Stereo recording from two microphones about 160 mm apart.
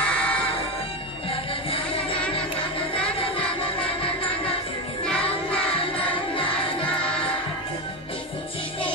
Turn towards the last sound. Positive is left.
turn(degrees=5)  # may be behind; listen again after turning